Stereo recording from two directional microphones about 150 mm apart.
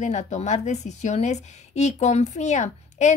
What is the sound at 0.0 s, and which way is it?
A woman's voice, 50° left (ahead or behind).